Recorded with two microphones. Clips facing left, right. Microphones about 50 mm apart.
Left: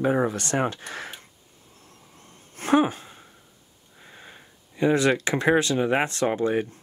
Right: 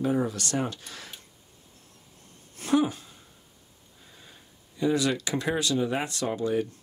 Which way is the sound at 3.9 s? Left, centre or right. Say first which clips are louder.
Left 7 dB; left.